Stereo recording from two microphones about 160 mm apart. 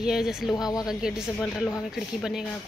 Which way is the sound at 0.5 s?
25° left (ahead or behind).